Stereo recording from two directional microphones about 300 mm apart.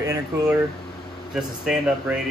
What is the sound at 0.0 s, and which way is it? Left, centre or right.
Speech, centre.